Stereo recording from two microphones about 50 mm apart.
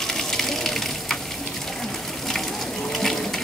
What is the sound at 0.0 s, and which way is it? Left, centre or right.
Gush, centre.